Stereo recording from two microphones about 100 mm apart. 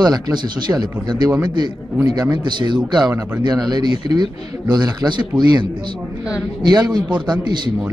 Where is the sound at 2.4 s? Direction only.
50° right (ahead or behind).